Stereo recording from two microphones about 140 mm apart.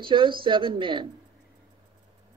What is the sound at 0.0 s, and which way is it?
Speech, 35° right (ahead or behind).